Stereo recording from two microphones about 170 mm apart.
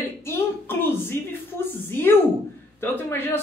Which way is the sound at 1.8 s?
15° left (ahead or behind).